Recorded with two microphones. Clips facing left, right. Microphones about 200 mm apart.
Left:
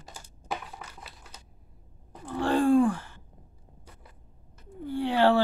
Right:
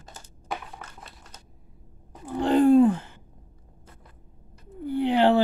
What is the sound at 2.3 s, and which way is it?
Groan, 20° right (ahead or behind).